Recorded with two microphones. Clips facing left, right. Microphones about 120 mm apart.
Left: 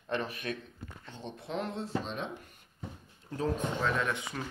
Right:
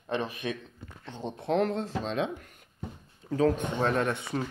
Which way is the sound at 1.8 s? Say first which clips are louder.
Right 5 dB; 90° right.